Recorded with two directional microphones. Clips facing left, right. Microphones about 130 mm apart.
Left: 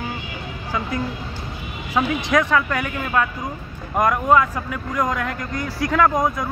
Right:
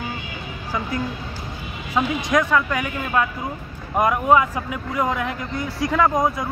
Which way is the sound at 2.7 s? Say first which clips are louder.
Even; 15° right (ahead or behind).